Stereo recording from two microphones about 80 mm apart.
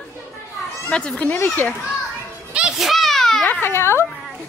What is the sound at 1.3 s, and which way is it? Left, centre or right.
Speech, left.